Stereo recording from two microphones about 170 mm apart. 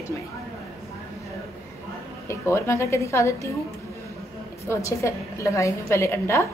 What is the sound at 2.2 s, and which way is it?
A woman's voice, 15° left (ahead or behind).